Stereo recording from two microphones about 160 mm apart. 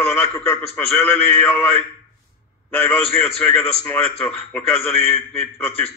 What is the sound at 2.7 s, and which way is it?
A man's voice, 10° left (ahead or behind).